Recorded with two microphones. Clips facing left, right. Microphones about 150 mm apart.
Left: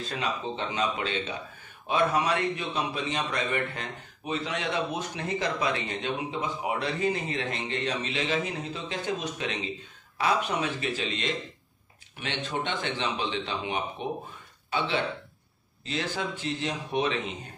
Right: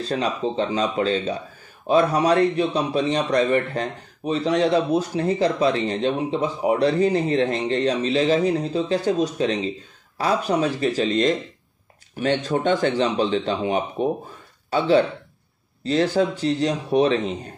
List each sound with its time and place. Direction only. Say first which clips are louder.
0.1 s speech: right 9 dB; 35° right (ahead or behind)